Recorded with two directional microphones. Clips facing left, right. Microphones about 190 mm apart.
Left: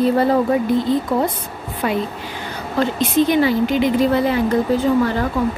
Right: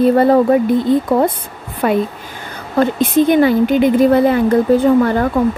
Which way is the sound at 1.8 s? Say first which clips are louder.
Right 6 dB; 55° right (ahead or behind).